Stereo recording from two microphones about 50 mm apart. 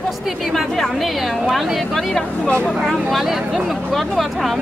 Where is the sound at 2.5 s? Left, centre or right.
Left.